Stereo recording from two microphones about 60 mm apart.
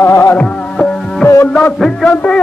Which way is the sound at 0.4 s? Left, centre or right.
Left.